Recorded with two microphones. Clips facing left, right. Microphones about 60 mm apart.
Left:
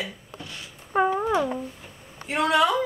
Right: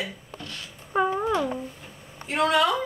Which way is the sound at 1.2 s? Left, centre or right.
Centre.